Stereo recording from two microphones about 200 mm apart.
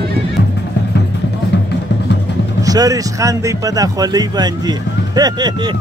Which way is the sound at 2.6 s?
20° right (ahead or behind).